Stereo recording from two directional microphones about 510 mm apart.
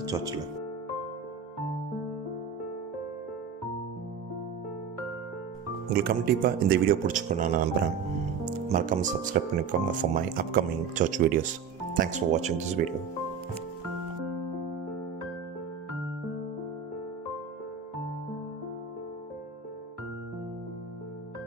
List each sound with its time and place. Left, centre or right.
0.1 s speech: centre
5.9 s speech: centre
8.6 s speech: centre